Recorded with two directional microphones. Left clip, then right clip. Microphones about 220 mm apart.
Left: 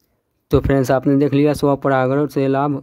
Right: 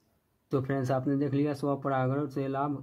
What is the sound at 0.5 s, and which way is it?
A man's voice, 45° left (ahead or behind).